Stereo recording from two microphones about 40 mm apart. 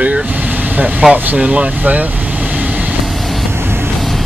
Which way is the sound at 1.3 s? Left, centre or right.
Right.